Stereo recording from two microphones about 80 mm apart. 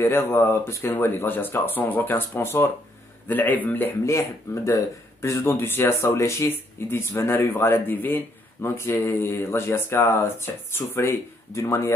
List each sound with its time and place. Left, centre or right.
0.0 s speech: left
3.3 s speech: left
4.0 s speech: left